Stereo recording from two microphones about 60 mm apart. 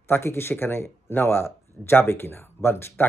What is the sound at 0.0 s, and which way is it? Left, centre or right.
Speech, left.